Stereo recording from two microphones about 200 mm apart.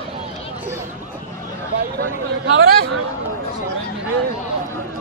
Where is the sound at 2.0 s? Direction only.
65° right (ahead or behind).